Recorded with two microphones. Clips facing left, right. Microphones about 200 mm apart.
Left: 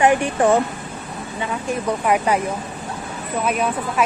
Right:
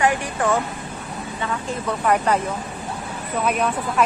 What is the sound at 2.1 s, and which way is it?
Speech, 5° left (ahead or behind).